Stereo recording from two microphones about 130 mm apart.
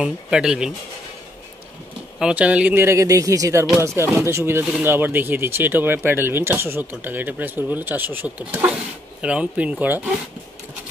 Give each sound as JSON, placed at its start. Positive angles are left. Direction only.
{"t": 0.0, "sound": "speech", "side_deg": -5}
{"t": 2.1, "sound": "speech", "side_deg": -10}